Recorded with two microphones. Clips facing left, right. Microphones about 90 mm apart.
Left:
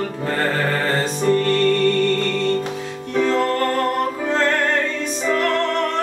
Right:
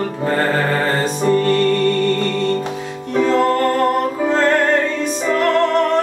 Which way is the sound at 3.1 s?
10° right (ahead or behind).